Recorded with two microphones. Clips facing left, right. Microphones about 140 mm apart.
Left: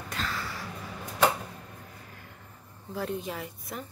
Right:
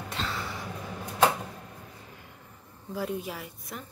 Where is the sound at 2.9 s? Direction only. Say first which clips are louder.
Even; 10° right (ahead or behind).